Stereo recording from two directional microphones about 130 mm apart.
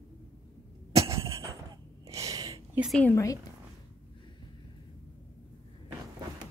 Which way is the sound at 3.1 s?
25° left (ahead or behind).